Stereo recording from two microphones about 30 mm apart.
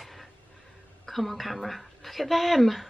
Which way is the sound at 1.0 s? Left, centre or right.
Centre.